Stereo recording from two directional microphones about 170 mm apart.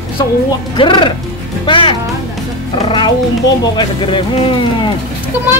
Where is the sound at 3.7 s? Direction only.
30° left (ahead or behind).